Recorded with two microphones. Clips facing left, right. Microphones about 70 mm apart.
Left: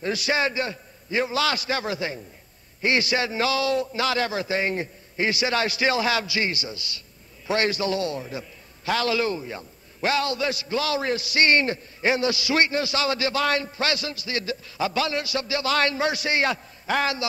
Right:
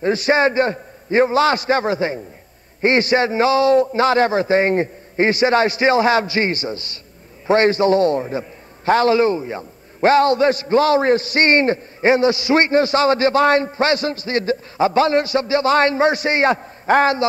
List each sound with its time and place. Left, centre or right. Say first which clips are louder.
0.0 s a man's voice: right 8 dB; right